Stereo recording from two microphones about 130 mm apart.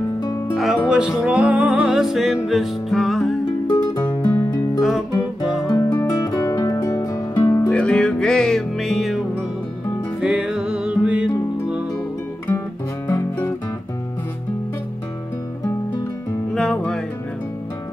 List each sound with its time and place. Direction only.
0.6 s music: 5° right (ahead or behind)
3.6 s music: 30° left (ahead or behind)
4.3 s music: 15° left (ahead or behind)
5.7 s music: 25° left (ahead or behind)
7.7 s music: 10° left (ahead or behind)
10.2 s music: 5° right (ahead or behind)
12.4 s music: 15° left (ahead or behind)
16.5 s music: 5° left (ahead or behind)